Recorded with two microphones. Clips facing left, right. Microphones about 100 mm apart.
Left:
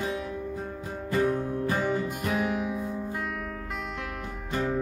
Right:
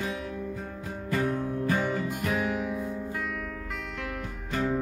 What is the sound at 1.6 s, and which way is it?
Music, 25° left (ahead or behind).